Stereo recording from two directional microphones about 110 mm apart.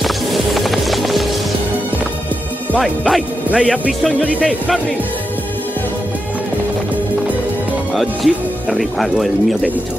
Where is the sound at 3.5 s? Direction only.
15° right (ahead or behind).